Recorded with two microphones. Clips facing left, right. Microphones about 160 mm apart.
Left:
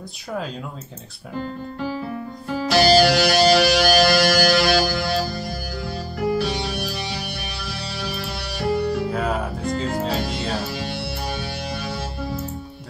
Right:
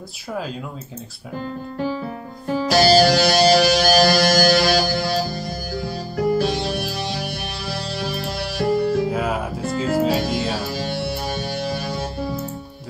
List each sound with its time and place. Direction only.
2.4 s music: 40° right (ahead or behind)
8.5 s music: 45° right (ahead or behind)
9.1 s music: 5° right (ahead or behind)
10.2 s music: 45° right (ahead or behind)